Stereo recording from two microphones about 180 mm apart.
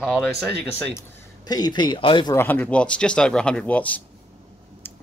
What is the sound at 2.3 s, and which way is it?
Speech, 10° left (ahead or behind).